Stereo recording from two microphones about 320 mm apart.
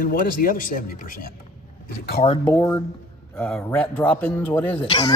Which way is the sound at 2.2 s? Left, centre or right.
Centre.